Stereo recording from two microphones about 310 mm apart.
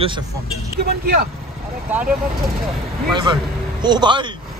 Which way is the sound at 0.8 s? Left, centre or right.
Right.